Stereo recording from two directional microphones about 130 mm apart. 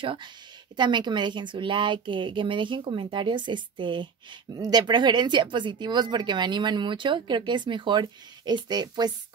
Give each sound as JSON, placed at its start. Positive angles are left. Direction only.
{"t": 0.0, "sound": "speech", "side_deg": -40}